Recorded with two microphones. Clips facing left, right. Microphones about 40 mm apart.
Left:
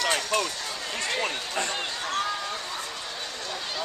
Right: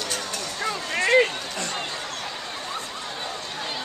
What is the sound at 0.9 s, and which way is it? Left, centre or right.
Run, right.